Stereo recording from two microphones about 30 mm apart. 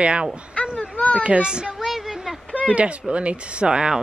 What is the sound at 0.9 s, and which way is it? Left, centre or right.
Speech, left.